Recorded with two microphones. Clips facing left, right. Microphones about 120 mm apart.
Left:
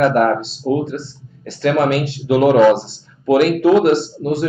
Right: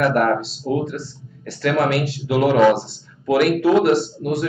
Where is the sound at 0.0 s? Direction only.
25° left (ahead or behind).